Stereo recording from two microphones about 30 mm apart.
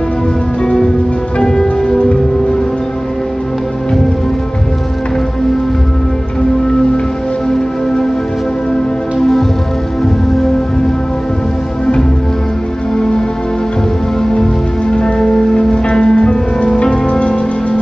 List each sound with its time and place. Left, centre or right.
1.4 s music: left
9.2 s music: centre
12.9 s music: left
15.0 s music: left
16.6 s music: left
16.9 s music: left